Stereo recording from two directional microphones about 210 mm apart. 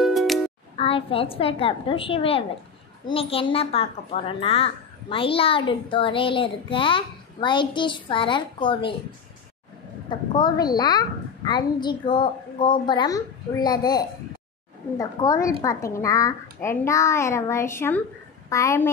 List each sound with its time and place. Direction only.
0.0 s music: centre (ahead or behind)
0.7 s a child's voice: 25° left (ahead or behind)
10.0 s a child's voice: 20° left (ahead or behind)